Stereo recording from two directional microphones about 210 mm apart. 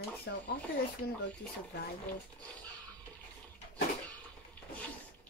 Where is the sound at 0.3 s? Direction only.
55° left (ahead or behind).